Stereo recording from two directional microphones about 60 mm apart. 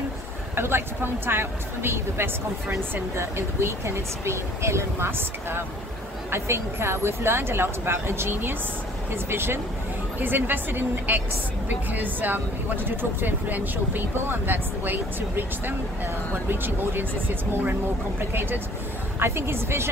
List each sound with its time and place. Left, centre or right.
0.6 s a woman's voice: right